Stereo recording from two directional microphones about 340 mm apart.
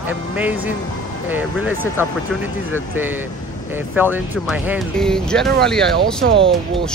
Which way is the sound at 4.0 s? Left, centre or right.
Centre.